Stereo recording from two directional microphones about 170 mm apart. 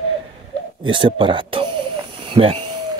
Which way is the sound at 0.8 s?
30° right (ahead or behind).